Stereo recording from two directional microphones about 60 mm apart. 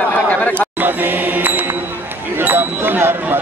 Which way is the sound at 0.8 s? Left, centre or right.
Right.